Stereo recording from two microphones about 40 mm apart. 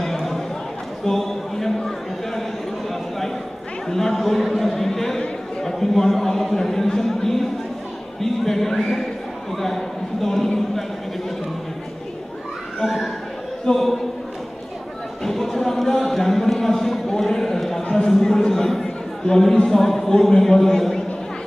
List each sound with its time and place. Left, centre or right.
0.0 s a sound: centre
3.8 s a man's voice: centre
12.8 s a man's voice: centre
13.7 s speech: centre
15.2 s a sound: centre
17.9 s speech: centre